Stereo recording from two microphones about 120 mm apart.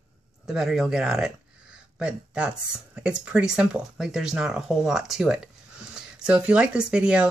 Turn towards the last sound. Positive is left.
turn(degrees=-10)  # may be behind; listen again after turning